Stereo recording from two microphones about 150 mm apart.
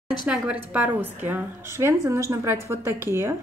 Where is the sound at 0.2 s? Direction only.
5° right (ahead or behind).